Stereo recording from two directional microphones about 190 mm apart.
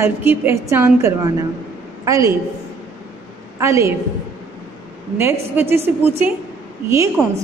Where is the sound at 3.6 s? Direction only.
15° right (ahead or behind).